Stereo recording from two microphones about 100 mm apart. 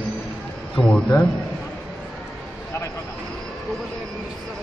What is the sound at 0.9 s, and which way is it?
Speech, 10° left (ahead or behind).